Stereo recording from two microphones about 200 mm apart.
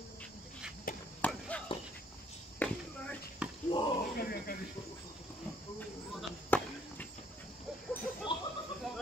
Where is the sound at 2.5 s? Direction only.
5° left (ahead or behind).